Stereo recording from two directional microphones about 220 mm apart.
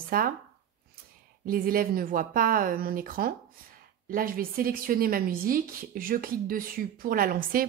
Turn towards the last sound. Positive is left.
turn(degrees=-40)  # may be behind; listen again after turning